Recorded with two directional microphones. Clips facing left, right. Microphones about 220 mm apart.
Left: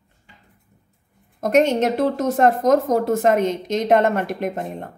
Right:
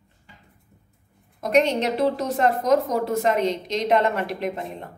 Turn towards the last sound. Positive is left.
turn(degrees=50)  # may be behind; listen again after turning